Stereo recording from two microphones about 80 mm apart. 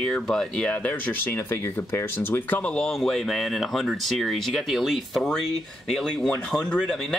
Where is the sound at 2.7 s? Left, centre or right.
Centre.